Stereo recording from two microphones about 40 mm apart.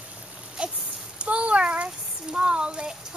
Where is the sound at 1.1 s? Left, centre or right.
Right.